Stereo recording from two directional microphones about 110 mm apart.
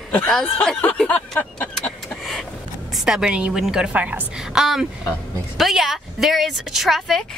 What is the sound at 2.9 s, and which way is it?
Speech, 5° right (ahead or behind).